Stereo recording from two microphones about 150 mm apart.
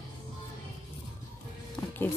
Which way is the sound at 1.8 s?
15° left (ahead or behind).